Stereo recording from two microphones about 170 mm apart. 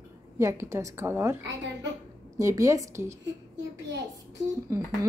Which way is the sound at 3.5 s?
90° right.